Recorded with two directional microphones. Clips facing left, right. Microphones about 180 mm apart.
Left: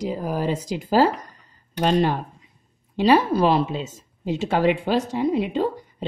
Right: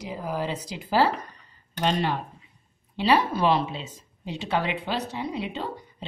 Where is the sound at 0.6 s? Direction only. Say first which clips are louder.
Left 4 dB; 45° left (ahead or behind).